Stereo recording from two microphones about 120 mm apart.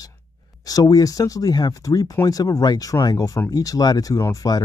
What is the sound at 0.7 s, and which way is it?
Speech, 30° left (ahead or behind).